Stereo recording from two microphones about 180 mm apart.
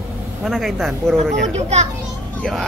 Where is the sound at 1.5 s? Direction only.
40° right (ahead or behind).